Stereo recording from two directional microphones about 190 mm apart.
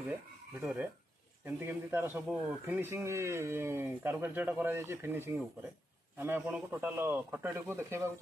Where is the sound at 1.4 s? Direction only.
10° right (ahead or behind).